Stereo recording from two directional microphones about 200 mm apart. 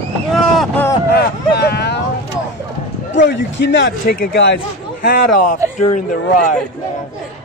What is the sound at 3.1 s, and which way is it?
Speech, 65° left (ahead or behind).